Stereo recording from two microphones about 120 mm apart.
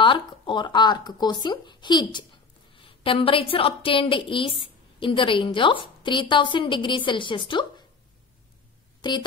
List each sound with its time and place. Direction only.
0.0 s a woman's voice: 40° left (ahead or behind)
9.0 s speech: 35° left (ahead or behind)